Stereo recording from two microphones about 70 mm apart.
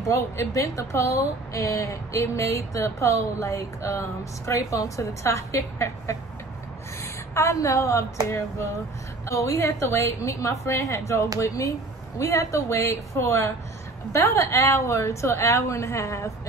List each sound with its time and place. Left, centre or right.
0.1 s a woman's voice: left
8.3 s speech: left
9.2 s speech: left